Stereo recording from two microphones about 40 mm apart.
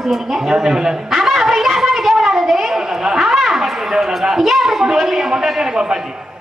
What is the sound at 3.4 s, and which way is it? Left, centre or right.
A woman's voice, centre.